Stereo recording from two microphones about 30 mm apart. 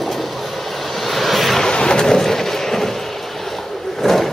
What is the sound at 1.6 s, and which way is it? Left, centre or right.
Vehicle, left.